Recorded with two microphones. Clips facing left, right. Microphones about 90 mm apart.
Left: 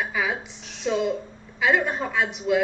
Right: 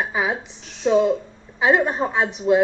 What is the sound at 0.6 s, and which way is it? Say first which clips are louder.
Speech: right 7 dB; centre (ahead or behind).